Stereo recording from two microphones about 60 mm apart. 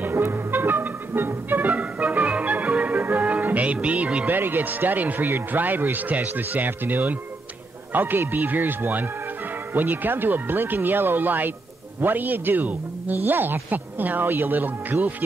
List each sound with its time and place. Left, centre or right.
0.3 s music: right
4.3 s speech: right